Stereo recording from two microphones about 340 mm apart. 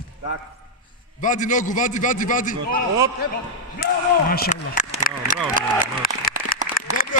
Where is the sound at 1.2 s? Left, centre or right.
Left.